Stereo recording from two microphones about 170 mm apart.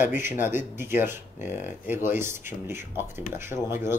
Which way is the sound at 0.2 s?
15° right (ahead or behind).